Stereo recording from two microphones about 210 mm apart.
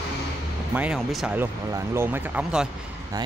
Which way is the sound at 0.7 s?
5° right (ahead or behind).